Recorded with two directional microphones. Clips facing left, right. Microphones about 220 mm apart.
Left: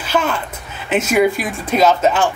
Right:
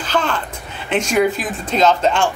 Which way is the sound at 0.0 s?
10° left (ahead or behind).